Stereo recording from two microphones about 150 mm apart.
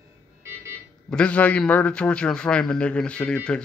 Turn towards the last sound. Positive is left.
turn(degrees=5)  # may be behind; listen again after turning